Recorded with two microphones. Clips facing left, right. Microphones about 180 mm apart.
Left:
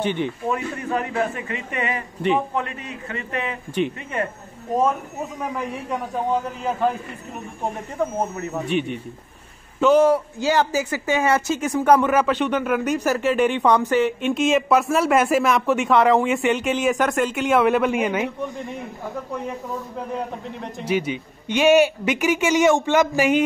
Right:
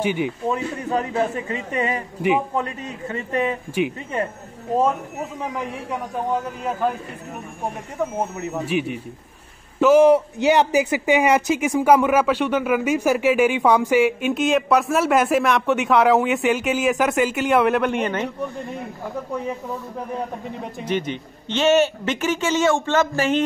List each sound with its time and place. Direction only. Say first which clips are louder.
0.0 s speech: right 1 dB; 10° right (ahead or behind)
0.5 s speech: right 1 dB; 25° right (ahead or behind)
3.3 s speech: right 6 dB; 35° right (ahead or behind)
8.6 s a man's voice: left 1 dB; 5° right (ahead or behind)
10.0 s speech: right 4 dB; 20° right (ahead or behind); by 18.3 s 5° left (ahead or behind)
20.8 s speech: left 2 dB; 10° left (ahead or behind)